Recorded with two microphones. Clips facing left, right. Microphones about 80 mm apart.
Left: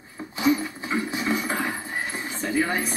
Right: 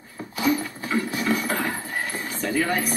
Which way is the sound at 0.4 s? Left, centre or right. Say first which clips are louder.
Left 1 dB; left.